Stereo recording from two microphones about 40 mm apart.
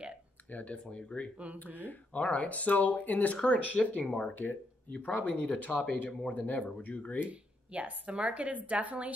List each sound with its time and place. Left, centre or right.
0.5 s speech: left
0.9 s speech: left
4.4 s speech: left
4.9 s speech: left
6.3 s speech: left
7.7 s a woman's voice: right